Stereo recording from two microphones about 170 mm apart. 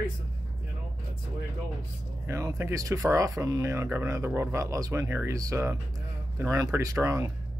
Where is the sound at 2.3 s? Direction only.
15° right (ahead or behind).